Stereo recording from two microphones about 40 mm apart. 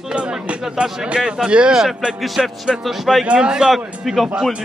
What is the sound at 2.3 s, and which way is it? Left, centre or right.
Speech, centre.